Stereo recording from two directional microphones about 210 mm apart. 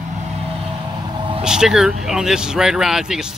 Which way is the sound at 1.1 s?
25° right (ahead or behind).